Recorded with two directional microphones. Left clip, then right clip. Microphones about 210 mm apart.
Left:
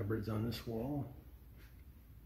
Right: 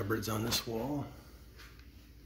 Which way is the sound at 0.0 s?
5° right (ahead or behind).